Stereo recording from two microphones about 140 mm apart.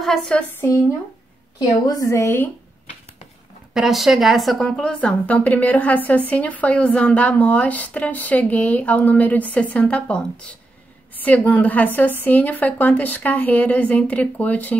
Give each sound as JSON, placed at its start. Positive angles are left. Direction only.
{"t": 0.0, "sound": "speech", "side_deg": 5}
{"t": 1.6, "sound": "a woman's voice", "side_deg": 25}
{"t": 3.7, "sound": "speech", "side_deg": 0}
{"t": 11.2, "sound": "speech", "side_deg": 10}